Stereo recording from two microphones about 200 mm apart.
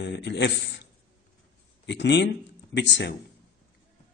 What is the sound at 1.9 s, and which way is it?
Speech, 60° left (ahead or behind).